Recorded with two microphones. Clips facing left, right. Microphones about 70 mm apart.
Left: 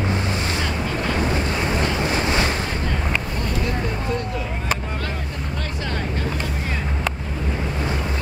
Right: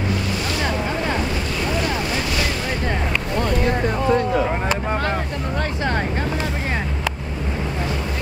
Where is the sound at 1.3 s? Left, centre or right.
Left.